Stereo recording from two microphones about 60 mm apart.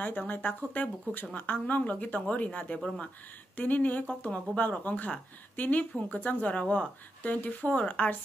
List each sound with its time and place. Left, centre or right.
0.0 s speech: left